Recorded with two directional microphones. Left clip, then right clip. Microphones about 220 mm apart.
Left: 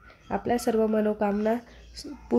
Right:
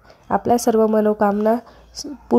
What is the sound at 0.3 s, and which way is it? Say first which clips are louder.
Speech: right 9 dB; 25° right (ahead or behind).